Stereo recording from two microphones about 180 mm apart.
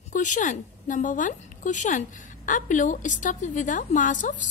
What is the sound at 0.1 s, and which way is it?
A woman's voice, 45° left (ahead or behind).